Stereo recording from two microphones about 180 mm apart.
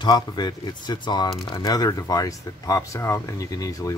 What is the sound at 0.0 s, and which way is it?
Speech, 20° left (ahead or behind).